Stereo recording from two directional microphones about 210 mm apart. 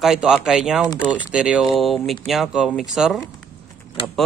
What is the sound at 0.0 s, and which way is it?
Speech, centre (ahead or behind).